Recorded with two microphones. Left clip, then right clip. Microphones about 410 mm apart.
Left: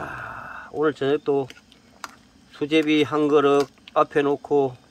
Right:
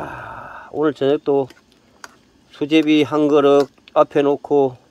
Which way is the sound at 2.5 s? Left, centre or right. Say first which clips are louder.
Right 5 dB; right.